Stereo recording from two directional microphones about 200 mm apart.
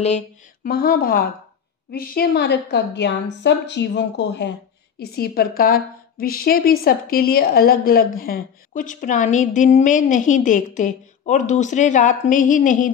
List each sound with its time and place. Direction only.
0.7 s a woman's voice: 50° left (ahead or behind)